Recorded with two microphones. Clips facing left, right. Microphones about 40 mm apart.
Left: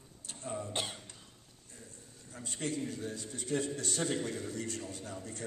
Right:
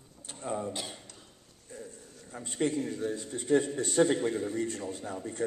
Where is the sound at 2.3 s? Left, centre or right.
Right.